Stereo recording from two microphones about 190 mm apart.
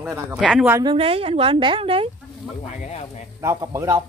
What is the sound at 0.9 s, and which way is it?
Speech, 30° right (ahead or behind).